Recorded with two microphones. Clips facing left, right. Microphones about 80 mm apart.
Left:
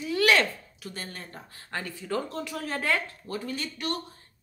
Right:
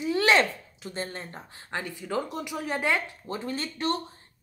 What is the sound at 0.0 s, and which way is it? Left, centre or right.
A woman's voice, right.